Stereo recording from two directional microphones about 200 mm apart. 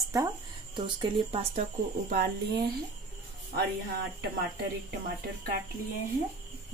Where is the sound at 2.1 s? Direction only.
50° right (ahead or behind).